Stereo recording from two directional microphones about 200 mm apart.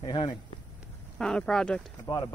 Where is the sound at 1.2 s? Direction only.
5° left (ahead or behind).